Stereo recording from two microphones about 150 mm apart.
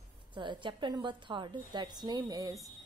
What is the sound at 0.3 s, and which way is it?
A woman's voice, 30° right (ahead or behind).